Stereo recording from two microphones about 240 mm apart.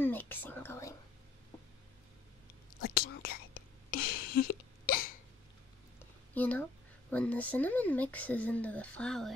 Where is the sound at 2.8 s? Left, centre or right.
Left.